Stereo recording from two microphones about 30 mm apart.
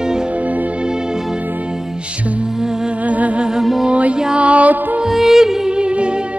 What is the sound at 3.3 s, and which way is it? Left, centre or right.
Music, right.